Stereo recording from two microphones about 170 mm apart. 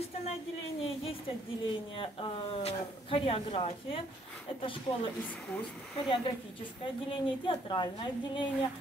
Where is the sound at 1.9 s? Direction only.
30° left (ahead or behind).